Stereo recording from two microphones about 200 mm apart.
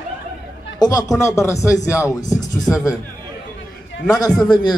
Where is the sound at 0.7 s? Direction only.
20° left (ahead or behind).